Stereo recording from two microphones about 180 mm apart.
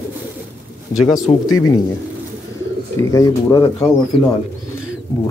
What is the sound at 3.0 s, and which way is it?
Speech, 20° left (ahead or behind).